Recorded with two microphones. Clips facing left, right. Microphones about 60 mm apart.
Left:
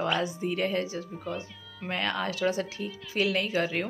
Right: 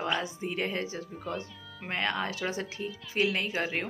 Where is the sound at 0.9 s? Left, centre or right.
Right.